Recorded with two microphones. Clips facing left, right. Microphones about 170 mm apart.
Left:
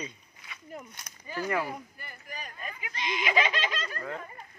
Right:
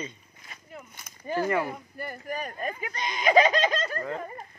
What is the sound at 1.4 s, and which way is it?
Speech, centre (ahead or behind).